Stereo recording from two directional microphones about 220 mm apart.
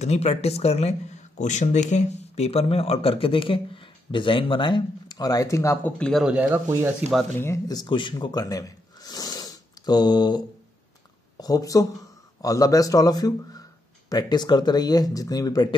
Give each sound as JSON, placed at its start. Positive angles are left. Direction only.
{"t": 0.0, "sound": "speech", "side_deg": 30}
{"t": 7.1, "sound": "speech", "side_deg": 0}
{"t": 7.4, "sound": "a man's voice", "side_deg": 15}